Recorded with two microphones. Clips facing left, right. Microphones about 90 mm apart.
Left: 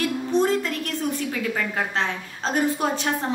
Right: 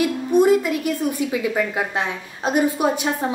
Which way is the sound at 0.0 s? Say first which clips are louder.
Right 5 dB; 10° right (ahead or behind).